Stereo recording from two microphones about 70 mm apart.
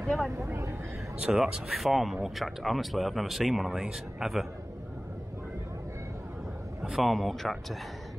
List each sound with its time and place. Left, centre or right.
0.4 s speech: right
1.2 s speech: centre
6.8 s speech: centre